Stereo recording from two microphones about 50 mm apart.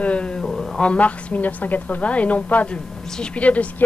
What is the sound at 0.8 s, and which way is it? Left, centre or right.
Speech, left.